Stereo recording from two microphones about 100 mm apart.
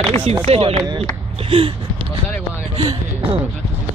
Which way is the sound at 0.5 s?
85° right.